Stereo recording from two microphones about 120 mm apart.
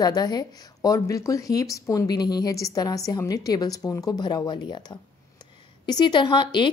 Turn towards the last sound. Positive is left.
turn(degrees=40)  # may be behind; listen again after turning